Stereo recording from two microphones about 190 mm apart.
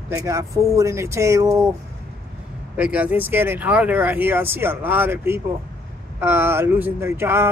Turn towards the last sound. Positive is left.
turn(degrees=-10)  # may be behind; listen again after turning